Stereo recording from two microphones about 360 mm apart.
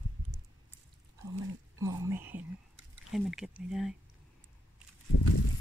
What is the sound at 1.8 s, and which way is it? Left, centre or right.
Speech, centre.